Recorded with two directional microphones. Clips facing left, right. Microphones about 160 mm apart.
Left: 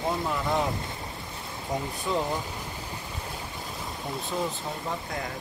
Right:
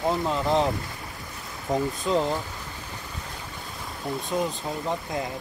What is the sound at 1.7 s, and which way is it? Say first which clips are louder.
Speech: right 5 dB; 20° right (ahead or behind).